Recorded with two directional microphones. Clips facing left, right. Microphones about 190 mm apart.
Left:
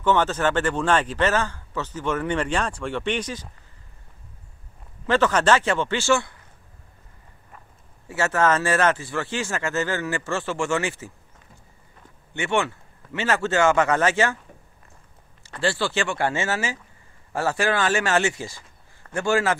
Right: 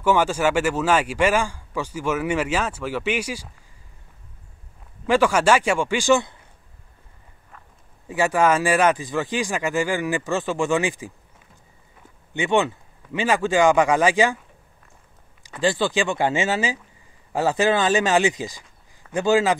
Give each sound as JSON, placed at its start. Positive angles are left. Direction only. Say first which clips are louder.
{"t": 0.0, "sound": "speech", "louder": "right 2 dB", "side_deg": -10}
{"t": 5.0, "sound": "speech", "louder": "right 2 dB", "side_deg": -10}
{"t": 8.1, "sound": "speech", "louder": "right 2 dB", "side_deg": -15}
{"t": 12.4, "sound": "speech", "louder": "right 3 dB", "side_deg": -15}
{"t": 15.4, "sound": "speech", "louder": "right 3 dB", "side_deg": -15}